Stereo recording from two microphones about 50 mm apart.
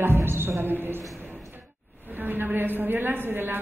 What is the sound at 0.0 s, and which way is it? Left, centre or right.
Speech, right.